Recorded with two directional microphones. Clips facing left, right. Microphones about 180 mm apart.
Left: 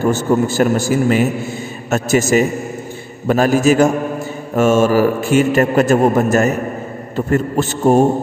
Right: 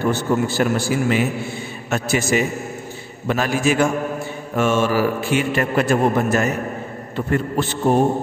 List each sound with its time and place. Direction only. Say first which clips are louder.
0.0 s a man's voice: left 4 dB; 45° left (ahead or behind)